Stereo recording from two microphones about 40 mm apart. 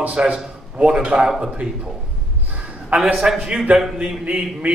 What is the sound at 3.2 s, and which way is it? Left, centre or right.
Speech, centre.